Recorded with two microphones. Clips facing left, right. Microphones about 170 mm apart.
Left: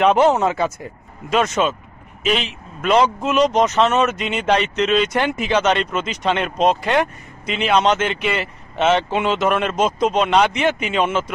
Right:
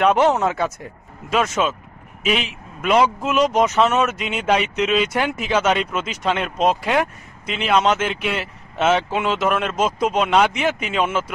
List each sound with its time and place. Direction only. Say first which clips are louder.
0.0 s speech: left 2 dB; centre (ahead or behind)